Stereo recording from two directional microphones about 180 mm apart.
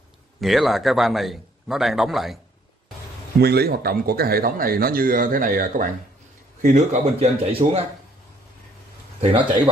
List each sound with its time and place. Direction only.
0.4 s a man's voice: centre (ahead or behind)
3.3 s speech: 60° right (ahead or behind); by 7.8 s 35° right (ahead or behind)
9.2 s speech: 30° right (ahead or behind)